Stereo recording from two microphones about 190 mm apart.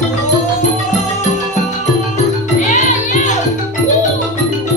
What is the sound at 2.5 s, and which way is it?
Music, 40° left (ahead or behind).